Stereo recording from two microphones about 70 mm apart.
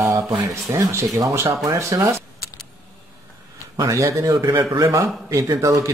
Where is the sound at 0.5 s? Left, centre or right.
Right.